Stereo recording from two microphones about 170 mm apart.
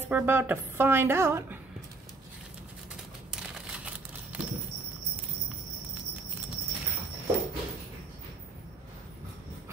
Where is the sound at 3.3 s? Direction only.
5° right (ahead or behind).